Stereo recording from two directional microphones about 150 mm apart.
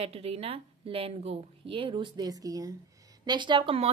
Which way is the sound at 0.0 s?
45° right (ahead or behind).